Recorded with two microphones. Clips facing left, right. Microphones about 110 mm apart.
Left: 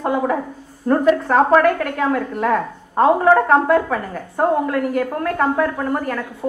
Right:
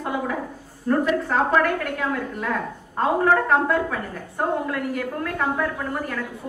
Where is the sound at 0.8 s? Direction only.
50° left (ahead or behind).